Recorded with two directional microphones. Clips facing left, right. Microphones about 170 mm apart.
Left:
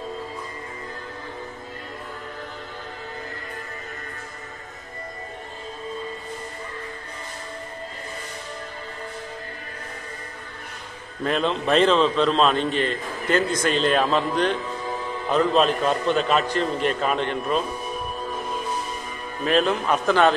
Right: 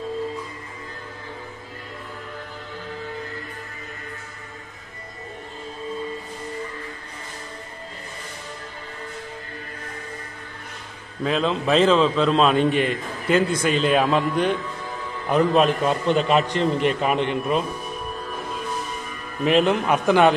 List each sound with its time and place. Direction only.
11.2 s a man's voice: centre (ahead or behind); by 17.6 s 15° right (ahead or behind)
19.4 s a man's voice: 15° right (ahead or behind)